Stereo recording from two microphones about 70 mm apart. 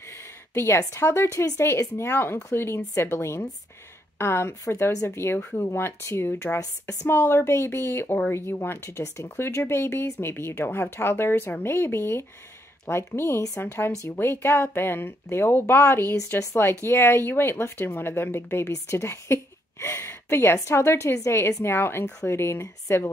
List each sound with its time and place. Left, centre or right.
0.1 s speech: left
6.6 s speech: left
7.1 s speech: left